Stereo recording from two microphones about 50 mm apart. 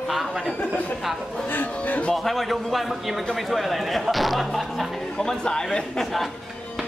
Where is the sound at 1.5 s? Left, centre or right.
Left.